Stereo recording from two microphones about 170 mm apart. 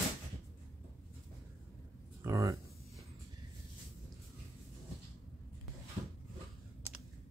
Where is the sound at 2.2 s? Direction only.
20° right (ahead or behind).